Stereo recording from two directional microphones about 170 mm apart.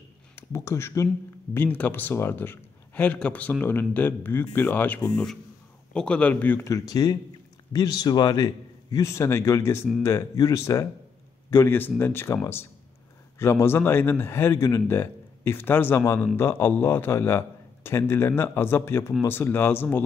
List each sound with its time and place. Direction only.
0.4 s a man's voice: 15° left (ahead or behind)